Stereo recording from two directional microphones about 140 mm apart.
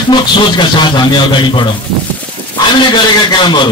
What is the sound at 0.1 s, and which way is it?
A man's voice, 35° left (ahead or behind).